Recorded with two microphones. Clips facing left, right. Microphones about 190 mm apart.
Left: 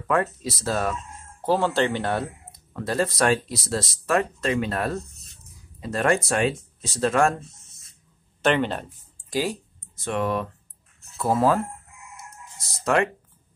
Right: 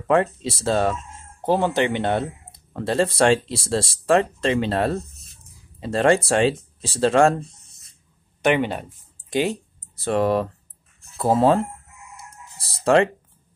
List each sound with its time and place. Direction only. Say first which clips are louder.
0.1 s speech: right 4 dB; 25° right (ahead or behind)
5.0 s a sound: right 1 dB; centre (ahead or behind)
5.8 s speech: right 4 dB; 30° right (ahead or behind)
7.4 s a sound: even; centre (ahead or behind)
8.4 s speech: right 2 dB; 15° right (ahead or behind)
9.3 s speech: right 4 dB; 25° right (ahead or behind)
9.9 s speech: right 5 dB; 35° right (ahead or behind)